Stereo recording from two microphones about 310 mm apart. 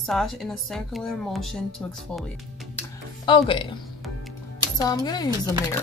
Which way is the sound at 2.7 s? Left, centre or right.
Centre.